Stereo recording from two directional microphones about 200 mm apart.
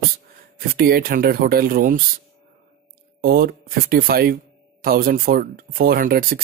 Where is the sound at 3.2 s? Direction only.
50° right (ahead or behind).